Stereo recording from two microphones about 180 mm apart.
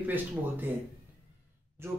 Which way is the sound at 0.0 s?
10° right (ahead or behind).